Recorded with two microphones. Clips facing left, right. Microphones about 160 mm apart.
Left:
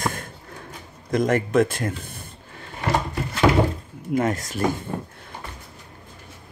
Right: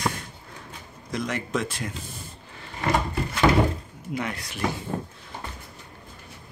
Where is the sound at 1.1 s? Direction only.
50° left (ahead or behind).